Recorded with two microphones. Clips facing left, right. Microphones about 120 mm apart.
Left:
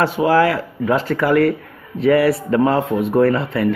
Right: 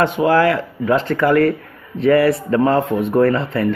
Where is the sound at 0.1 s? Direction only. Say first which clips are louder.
Even; 25° left (ahead or behind).